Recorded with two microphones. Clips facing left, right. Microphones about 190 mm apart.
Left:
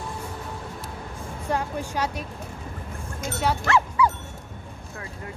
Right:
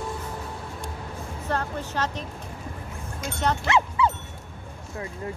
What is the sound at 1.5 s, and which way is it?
Speech, 10° left (ahead or behind).